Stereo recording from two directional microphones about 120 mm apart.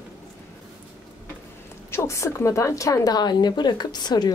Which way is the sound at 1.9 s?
20° left (ahead or behind).